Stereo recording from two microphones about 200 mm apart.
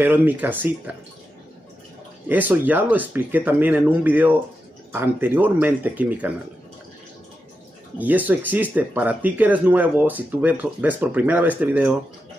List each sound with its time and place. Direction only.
0.0 s speech: 10° right (ahead or behind)
2.2 s speech: 10° right (ahead or behind)
8.0 s speech: 10° right (ahead or behind)